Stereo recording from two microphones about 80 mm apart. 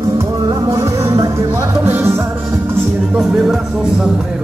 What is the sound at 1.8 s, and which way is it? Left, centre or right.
Music, right.